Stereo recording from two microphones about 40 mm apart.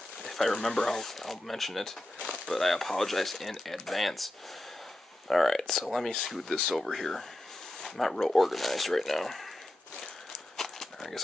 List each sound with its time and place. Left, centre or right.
0.2 s speech: centre
5.3 s speech: centre
10.6 s a sound: centre